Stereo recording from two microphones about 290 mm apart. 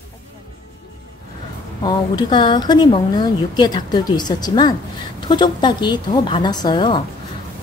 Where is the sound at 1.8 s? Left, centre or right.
Centre.